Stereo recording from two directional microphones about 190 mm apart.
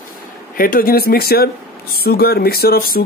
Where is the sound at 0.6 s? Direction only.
50° left (ahead or behind).